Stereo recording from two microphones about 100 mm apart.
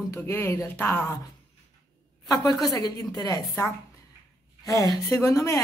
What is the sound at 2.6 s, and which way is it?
Speech, 40° left (ahead or behind).